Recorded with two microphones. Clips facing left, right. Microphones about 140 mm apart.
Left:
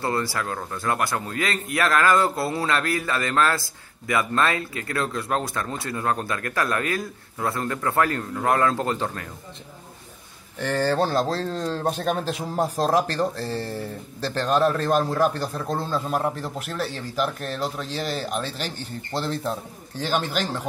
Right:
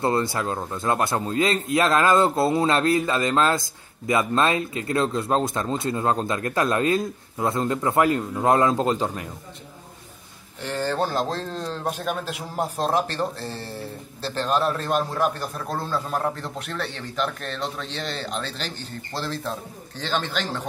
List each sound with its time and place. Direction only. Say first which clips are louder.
0.0 s a man's voice: right 3 dB; 25° right (ahead or behind)
10.6 s a man's voice: left 3 dB; 45° left (ahead or behind)
16.1 s a man's voice: left 1 dB; 15° left (ahead or behind)
19.1 s speech: left 3 dB; 15° left (ahead or behind)